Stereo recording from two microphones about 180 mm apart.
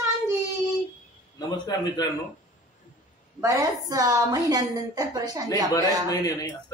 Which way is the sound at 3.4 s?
20° right (ahead or behind).